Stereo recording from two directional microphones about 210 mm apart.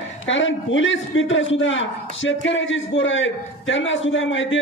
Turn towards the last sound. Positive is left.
turn(degrees=65)  # may be behind; listen again after turning